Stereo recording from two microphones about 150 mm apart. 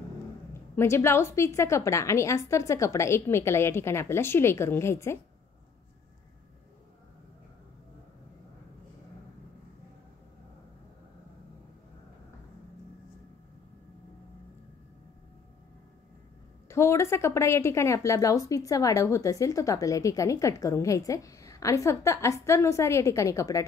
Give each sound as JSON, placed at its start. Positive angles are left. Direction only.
{"t": 0.7, "sound": "a woman's voice", "side_deg": 15}
{"t": 16.6, "sound": "a woman's voice", "side_deg": 20}